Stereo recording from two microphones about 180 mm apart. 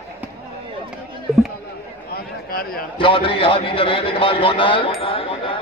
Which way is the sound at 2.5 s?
55° left (ahead or behind).